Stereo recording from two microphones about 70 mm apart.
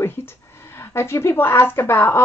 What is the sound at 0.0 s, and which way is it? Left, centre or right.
A woman's voice, left.